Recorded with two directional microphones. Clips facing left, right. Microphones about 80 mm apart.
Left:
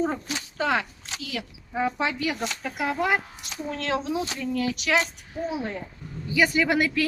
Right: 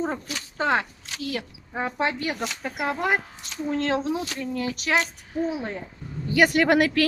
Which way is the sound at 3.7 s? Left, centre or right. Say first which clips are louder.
Right 2 dB; right.